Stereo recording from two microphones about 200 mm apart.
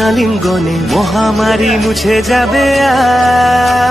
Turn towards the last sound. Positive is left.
turn(degrees=0)  # may be behind; listen again after turning